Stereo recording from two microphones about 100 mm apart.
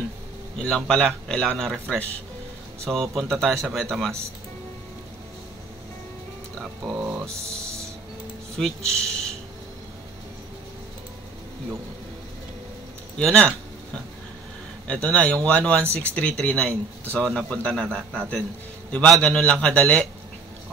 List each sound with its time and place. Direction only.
0.6 s a man's voice: 5° left (ahead or behind)
6.6 s speech: 5° right (ahead or behind)
7.0 s speech: 25° right (ahead or behind)
7.2 s music: 5° left (ahead or behind)
8.5 s speech: 5° left (ahead or behind)
13.2 s a man's voice: 10° left (ahead or behind)